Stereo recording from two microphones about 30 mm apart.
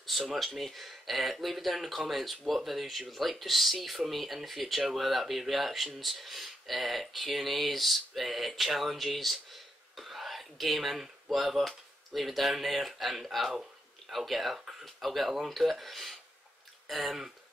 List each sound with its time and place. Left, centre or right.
0.4 s speech: centre
13.5 s a sound: centre
14.1 s speech: centre